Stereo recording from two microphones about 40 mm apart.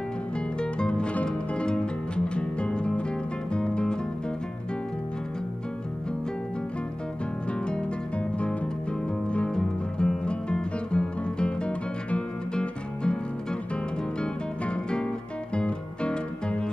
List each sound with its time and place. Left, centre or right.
0.6 s music: left
9.3 s music: left
14.2 s music: left